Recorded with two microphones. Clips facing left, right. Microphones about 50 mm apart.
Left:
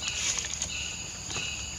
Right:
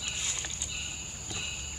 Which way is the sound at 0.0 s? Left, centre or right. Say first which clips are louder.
Left 3 dB; left.